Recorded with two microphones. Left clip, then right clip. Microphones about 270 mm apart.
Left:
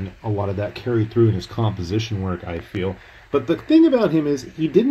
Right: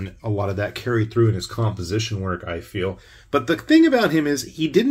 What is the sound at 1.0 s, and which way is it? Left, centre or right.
Speech, left.